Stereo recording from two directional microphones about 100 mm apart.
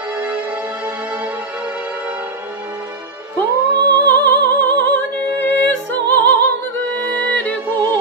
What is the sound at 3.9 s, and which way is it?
Music, 20° left (ahead or behind).